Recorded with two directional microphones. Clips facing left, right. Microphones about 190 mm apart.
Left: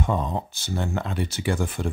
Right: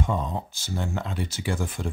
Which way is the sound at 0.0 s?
60° left (ahead or behind).